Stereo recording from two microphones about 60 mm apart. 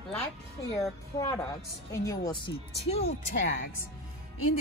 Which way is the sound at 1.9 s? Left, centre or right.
Left.